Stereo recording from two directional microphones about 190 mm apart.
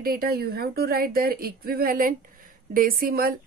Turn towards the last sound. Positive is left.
turn(degrees=-50)  # may be behind; listen again after turning